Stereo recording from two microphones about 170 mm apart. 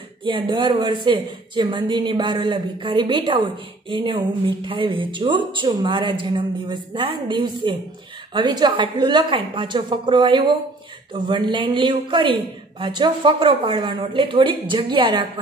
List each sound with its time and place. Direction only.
0.2 s a woman's voice: 30° right (ahead or behind)